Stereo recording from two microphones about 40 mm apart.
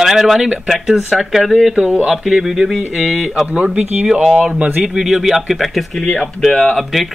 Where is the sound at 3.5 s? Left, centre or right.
Right.